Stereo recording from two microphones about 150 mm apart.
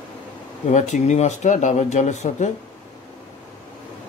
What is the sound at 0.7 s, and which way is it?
Speech, 55° left (ahead or behind).